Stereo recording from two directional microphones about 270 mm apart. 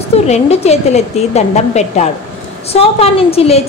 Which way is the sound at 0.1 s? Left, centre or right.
Left.